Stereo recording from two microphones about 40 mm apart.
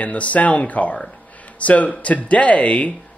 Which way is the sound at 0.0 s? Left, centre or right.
Left.